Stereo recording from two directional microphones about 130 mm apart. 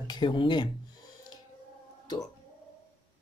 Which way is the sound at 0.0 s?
35° left (ahead or behind).